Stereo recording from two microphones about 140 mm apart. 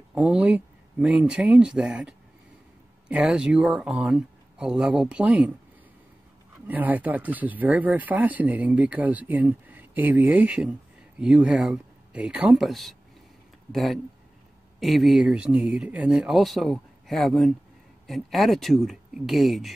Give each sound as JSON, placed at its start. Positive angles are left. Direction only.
{"t": 0.1, "sound": "speech", "side_deg": -5}
{"t": 6.7, "sound": "speech", "side_deg": -10}